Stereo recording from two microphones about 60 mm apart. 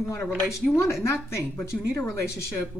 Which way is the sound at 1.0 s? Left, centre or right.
Left.